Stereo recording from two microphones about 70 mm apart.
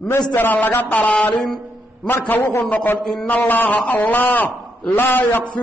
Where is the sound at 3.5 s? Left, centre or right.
Left.